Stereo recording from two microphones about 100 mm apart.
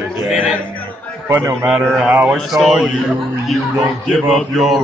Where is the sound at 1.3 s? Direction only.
25° right (ahead or behind).